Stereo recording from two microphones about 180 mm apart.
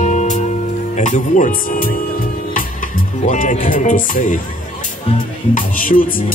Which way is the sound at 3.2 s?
45° left (ahead or behind).